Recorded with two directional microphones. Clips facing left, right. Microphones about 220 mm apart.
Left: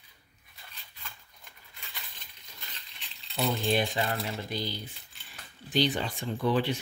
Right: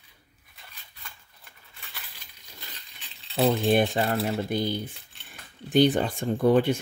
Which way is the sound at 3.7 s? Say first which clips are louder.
Right 6 dB; 50° right (ahead or behind).